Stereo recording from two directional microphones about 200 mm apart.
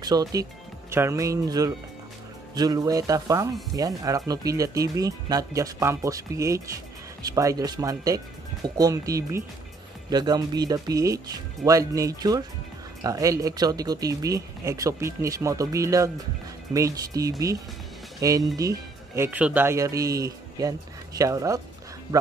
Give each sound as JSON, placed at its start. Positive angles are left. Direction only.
{"t": 0.0, "sound": "speech", "side_deg": -20}